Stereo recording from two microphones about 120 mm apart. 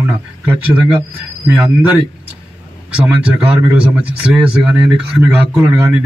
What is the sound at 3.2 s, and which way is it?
Speech, 10° right (ahead or behind).